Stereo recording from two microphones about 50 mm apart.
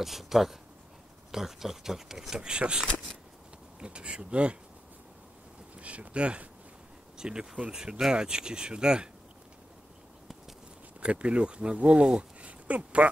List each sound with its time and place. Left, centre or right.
0.0 s speech: centre; by 4.6 s right
5.8 s speech: right
11.0 s speech: right